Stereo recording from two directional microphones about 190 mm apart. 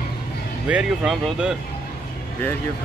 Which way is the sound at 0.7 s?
5° right (ahead or behind).